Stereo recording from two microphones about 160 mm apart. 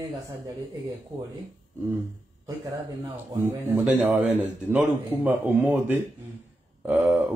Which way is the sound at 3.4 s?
10° right (ahead or behind).